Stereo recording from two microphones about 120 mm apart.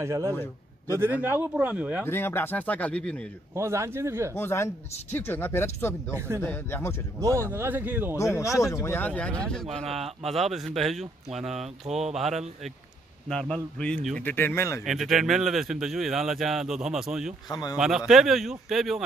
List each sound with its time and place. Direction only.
0.0 s speech: 25° right (ahead or behind)
0.3 s a man's voice: 20° left (ahead or behind)
0.9 s speech: 15° right (ahead or behind)
2.0 s speech: 20° left (ahead or behind)
3.5 s speech: 25° right (ahead or behind)
4.3 s speech: 20° left (ahead or behind)
6.1 s speech: 20° right (ahead or behind)
6.4 s speech: 20° left (ahead or behind)
7.2 s speech: 25° right (ahead or behind)
8.2 s speech: 25° left (ahead or behind)
14.9 s speech: centre (ahead or behind)
17.5 s a man's voice: 35° left (ahead or behind)
17.7 s speech: 5° right (ahead or behind)